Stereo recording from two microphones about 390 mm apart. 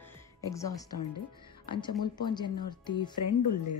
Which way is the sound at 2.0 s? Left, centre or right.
Centre.